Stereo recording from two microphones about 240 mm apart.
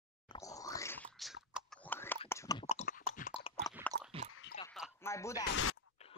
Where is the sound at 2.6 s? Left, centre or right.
Left.